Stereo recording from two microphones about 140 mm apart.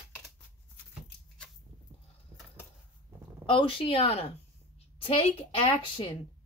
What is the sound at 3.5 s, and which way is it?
Speech, 40° left (ahead or behind).